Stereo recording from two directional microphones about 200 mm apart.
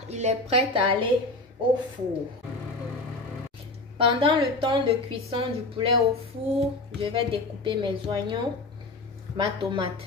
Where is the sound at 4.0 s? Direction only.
25° right (ahead or behind).